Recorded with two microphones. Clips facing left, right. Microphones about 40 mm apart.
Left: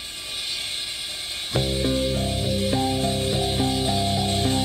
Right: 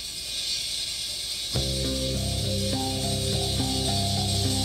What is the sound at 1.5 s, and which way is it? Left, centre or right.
Music, left.